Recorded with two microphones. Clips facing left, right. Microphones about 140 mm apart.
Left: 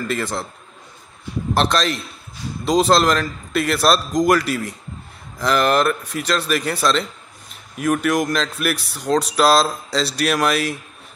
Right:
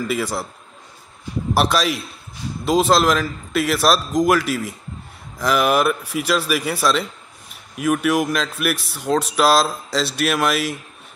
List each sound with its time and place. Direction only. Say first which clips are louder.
0.0 s speech: right 1 dB; 5° right (ahead or behind)
1.5 s speech: even; 5° right (ahead or behind)